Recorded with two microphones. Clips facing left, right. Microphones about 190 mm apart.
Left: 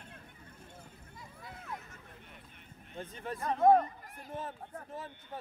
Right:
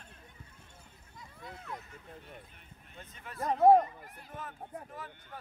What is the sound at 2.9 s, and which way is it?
Speech, 35° left (ahead or behind).